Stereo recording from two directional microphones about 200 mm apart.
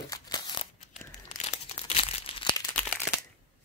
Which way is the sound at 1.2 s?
35° left (ahead or behind).